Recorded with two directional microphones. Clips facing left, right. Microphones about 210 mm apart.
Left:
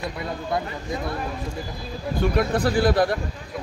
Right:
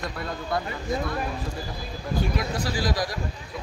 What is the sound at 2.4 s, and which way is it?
Speech, 60° left (ahead or behind).